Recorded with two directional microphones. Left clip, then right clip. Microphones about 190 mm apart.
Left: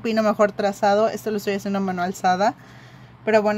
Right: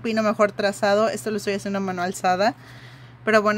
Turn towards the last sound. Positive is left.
turn(degrees=-20)  # may be behind; listen again after turning